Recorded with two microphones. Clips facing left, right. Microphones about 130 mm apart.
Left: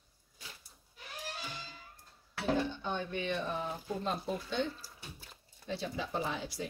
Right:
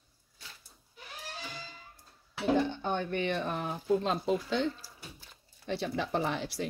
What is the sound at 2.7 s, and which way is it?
Speech, 55° right (ahead or behind).